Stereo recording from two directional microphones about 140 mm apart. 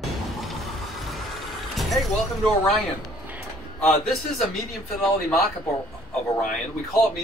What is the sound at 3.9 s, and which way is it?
Speech, centre (ahead or behind).